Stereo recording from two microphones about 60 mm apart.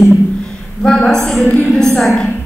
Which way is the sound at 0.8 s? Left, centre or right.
Centre.